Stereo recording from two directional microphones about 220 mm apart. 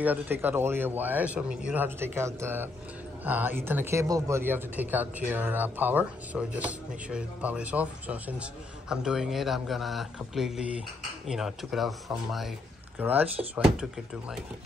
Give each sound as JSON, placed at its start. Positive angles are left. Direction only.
{"t": 0.0, "sound": "speech", "side_deg": -10}